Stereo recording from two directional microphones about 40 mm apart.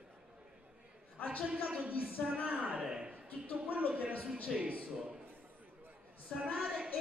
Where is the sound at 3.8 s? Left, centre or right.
Right.